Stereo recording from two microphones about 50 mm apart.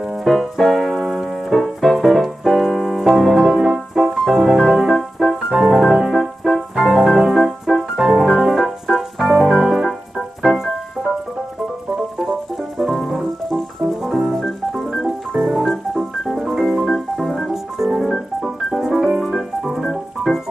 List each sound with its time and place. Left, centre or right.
0.2 s keyboard: centre
1.5 s music: centre
12.2 s music: centre